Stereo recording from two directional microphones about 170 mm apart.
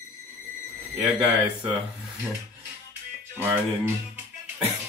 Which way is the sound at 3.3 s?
15° right (ahead or behind).